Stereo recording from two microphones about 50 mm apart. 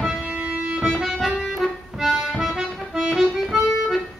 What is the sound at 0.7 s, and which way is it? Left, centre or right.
Music, centre.